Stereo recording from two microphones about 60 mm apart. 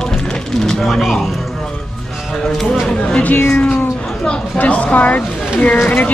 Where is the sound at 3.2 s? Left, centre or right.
Left.